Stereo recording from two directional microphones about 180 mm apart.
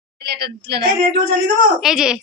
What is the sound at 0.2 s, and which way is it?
Speech, 65° right (ahead or behind).